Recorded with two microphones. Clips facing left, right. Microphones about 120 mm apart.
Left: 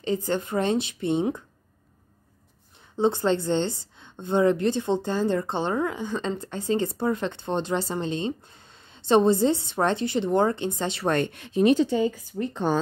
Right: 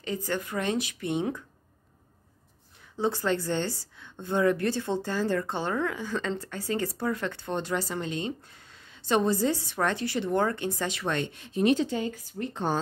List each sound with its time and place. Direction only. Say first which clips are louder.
0.0 s a woman's voice: left 5 dB; 25° left (ahead or behind)
3.0 s a woman's voice: left 5 dB; 25° left (ahead or behind)
11.1 s speech: left 10 dB; 50° left (ahead or behind); by 11.6 s 65° left (ahead or behind)